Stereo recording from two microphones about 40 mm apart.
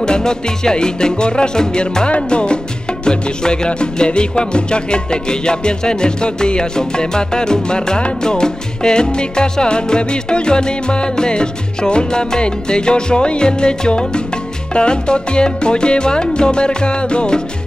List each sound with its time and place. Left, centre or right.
0.0 s music: centre